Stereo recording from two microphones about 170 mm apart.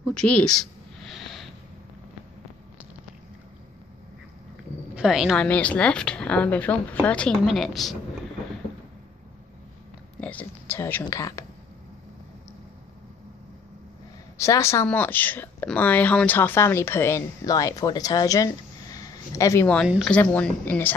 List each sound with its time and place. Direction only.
0.0 s a sound: centre (ahead or behind)
4.9 s speech: 5° right (ahead or behind)
10.2 s speech: 10° left (ahead or behind)
14.4 s speech: 15° left (ahead or behind)
19.8 s speech: centre (ahead or behind)